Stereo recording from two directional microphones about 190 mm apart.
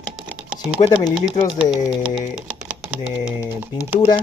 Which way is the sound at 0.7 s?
25° left (ahead or behind).